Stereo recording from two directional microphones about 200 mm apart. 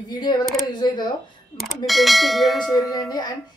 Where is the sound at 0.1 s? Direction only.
20° left (ahead or behind).